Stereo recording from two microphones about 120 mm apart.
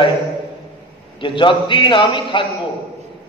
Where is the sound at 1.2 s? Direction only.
40° left (ahead or behind).